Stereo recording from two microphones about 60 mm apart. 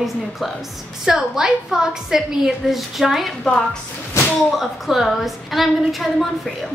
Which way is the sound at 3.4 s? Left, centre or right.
Centre.